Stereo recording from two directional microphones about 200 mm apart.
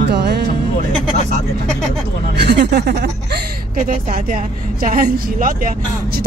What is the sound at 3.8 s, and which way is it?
Speech, 40° right (ahead or behind).